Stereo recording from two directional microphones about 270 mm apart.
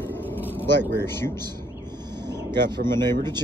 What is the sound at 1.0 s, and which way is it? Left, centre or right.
Speech, centre.